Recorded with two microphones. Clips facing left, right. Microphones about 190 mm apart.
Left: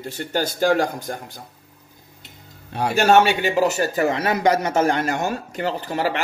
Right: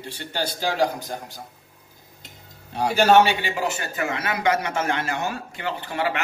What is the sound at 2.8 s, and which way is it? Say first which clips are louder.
A man's voice: left 1 dB; 45° left (ahead or behind).